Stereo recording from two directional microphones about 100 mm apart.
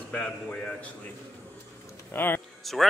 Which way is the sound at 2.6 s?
Centre (ahead or behind).